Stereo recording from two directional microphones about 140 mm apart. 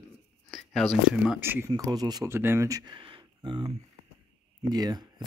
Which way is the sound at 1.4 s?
15° right (ahead or behind).